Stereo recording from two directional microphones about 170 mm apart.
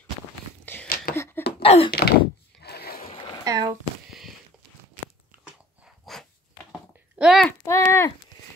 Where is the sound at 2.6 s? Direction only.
70° left (ahead or behind).